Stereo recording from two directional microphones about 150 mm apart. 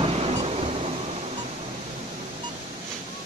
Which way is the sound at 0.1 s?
40° right (ahead or behind).